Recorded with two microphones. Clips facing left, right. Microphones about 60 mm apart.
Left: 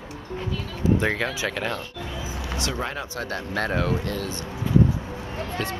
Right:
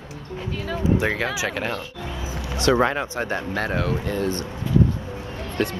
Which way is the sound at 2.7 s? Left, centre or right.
Right.